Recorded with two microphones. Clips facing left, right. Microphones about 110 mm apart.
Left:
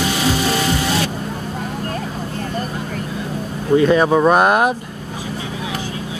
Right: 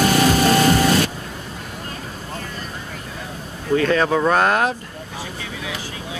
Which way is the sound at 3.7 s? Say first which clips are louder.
Left 5 dB; 15° left (ahead or behind).